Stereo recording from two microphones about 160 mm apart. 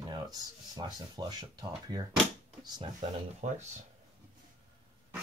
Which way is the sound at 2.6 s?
25° right (ahead or behind).